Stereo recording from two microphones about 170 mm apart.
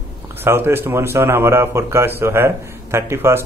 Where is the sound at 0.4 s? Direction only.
15° right (ahead or behind).